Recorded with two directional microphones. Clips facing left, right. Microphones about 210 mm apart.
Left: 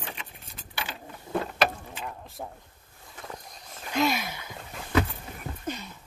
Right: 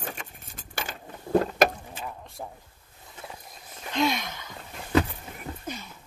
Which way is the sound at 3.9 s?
5° left (ahead or behind).